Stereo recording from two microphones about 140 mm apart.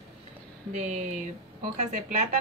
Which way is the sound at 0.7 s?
55° right (ahead or behind).